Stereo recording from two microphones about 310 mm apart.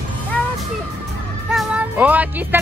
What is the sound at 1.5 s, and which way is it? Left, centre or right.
Speech, centre.